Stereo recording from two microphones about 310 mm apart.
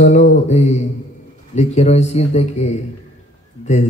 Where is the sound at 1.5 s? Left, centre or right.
Left.